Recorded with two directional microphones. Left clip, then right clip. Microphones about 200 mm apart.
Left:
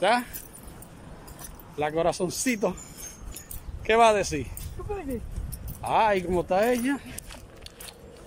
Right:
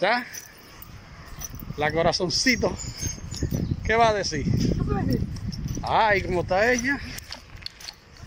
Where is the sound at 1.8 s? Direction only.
10° left (ahead or behind).